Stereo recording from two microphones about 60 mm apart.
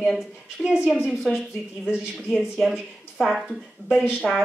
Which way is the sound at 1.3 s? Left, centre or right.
Centre.